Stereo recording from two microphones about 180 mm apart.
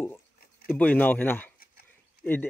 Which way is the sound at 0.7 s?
10° left (ahead or behind).